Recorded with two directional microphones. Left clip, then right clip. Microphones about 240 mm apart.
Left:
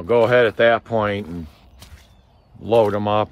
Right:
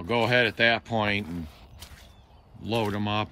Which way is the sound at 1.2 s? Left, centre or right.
Centre.